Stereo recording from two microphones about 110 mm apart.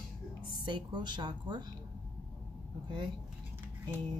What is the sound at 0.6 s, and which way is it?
Speech, 45° right (ahead or behind).